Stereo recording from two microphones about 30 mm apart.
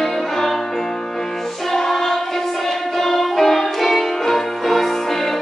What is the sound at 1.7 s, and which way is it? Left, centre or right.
Music, centre.